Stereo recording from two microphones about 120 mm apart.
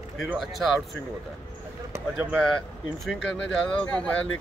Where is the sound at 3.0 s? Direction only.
Centre (ahead or behind).